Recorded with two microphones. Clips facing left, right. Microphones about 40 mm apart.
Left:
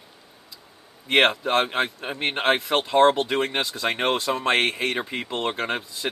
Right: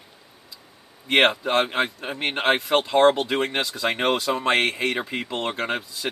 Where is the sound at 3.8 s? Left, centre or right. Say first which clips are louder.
Right 2 dB; centre.